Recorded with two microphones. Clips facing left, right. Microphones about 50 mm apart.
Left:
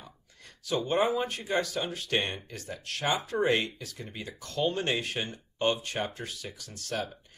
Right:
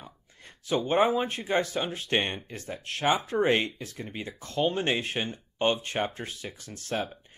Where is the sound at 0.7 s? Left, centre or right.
Right.